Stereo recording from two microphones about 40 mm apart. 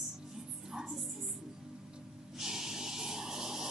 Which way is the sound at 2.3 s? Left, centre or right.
Centre.